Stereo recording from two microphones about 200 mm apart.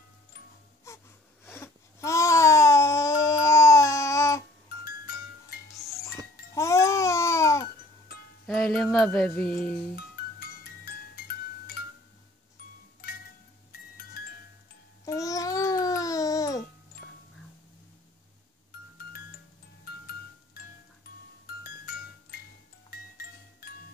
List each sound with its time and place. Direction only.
0.9 s gasp: 15° left (ahead or behind)
1.4 s babbling: 10° left (ahead or behind)
4.8 s music: 50° left (ahead or behind)
6.5 s music: 15° left (ahead or behind)
8.5 s music: centre (ahead or behind)
15.0 s babbling: 15° left (ahead or behind)
21.6 s music: 50° left (ahead or behind)